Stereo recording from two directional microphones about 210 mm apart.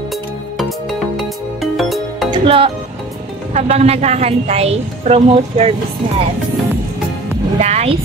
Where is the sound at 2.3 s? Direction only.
25° right (ahead or behind).